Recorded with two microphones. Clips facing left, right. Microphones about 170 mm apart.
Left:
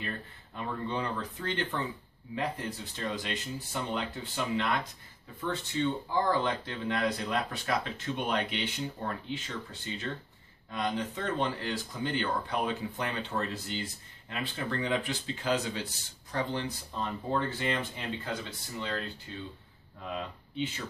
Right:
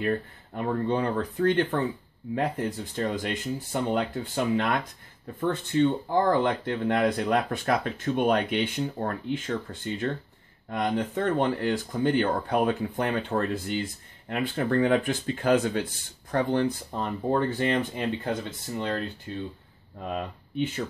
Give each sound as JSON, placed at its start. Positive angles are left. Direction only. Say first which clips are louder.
{"t": 0.0, "sound": "speech", "louder": "right 12 dB", "side_deg": -55}